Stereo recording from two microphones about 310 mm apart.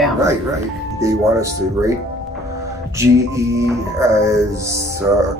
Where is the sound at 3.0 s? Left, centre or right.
Centre.